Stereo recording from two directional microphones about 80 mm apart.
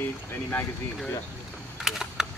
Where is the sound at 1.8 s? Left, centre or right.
Centre.